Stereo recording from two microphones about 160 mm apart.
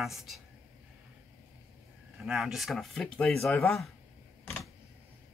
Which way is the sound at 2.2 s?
Centre (ahead or behind).